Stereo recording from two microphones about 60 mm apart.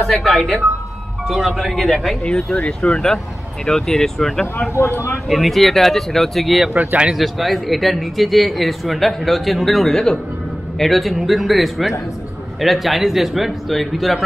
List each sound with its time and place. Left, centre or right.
0.0 s speech: centre
2.2 s speech: centre
4.7 s speech: left
5.3 s speech: centre
6.7 s speech: right
7.2 s speech: centre